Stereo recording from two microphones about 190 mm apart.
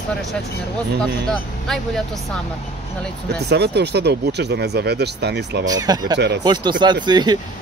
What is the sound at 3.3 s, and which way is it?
Speech, 60° right (ahead or behind).